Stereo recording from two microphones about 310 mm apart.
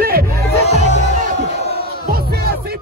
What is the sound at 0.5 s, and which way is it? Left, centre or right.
Music, left.